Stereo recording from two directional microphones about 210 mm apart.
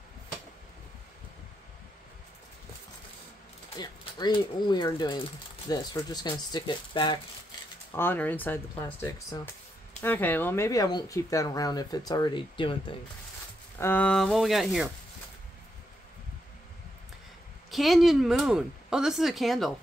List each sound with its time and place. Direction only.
3.7 s speech: 20° left (ahead or behind)
7.9 s speech: 10° left (ahead or behind)
13.7 s speech: 10° left (ahead or behind)
17.6 s speech: centre (ahead or behind)